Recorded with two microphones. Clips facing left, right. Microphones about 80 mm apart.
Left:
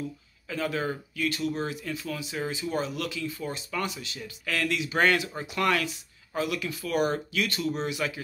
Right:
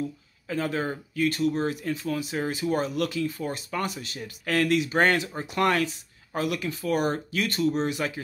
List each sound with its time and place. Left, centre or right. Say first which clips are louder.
0.5 s speech: right 2 dB; right